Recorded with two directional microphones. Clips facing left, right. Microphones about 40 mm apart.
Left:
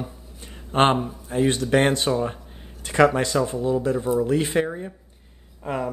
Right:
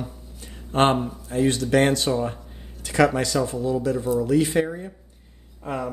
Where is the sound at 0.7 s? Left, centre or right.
Left.